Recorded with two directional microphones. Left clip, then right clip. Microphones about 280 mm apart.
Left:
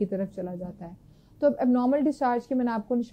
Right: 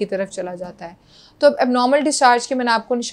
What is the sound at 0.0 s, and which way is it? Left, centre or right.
Speech, centre.